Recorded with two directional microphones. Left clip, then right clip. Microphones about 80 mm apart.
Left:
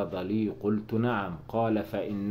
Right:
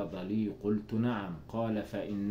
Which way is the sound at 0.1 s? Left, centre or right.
Centre.